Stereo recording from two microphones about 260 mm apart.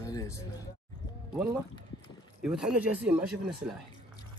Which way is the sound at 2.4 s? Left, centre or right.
Centre.